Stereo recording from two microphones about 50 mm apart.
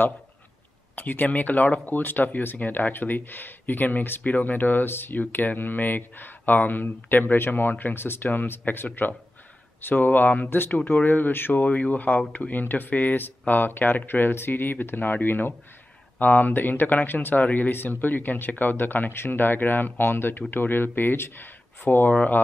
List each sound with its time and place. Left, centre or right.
0.9 s speech: left
11.6 s speech: left